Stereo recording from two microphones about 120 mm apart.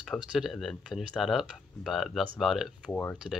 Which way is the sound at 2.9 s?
15° left (ahead or behind).